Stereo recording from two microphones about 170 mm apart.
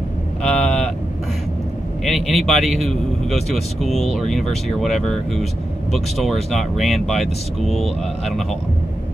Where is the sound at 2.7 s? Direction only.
Centre (ahead or behind).